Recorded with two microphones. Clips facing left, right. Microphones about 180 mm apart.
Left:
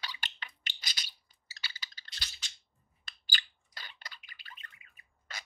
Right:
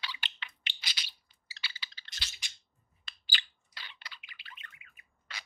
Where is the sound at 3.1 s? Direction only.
45° left (ahead or behind).